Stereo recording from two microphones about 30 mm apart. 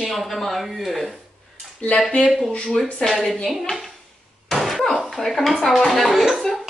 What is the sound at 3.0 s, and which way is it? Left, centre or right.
Speech, centre.